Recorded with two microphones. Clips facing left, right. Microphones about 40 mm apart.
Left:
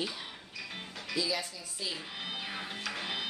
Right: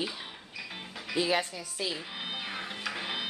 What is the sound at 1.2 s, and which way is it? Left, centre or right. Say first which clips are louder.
Speech: right 6 dB; right.